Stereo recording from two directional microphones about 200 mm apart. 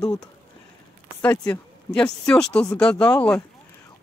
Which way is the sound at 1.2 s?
5° left (ahead or behind).